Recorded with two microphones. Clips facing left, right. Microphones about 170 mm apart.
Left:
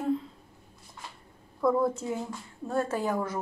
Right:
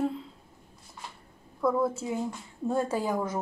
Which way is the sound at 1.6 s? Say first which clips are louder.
Left 1 dB; centre (ahead or behind).